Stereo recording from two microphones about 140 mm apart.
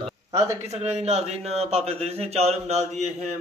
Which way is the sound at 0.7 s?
50° right (ahead or behind).